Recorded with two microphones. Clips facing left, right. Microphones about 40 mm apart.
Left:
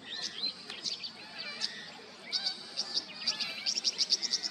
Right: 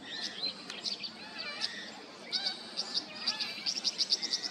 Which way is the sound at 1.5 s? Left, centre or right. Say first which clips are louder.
Right 1 dB; centre.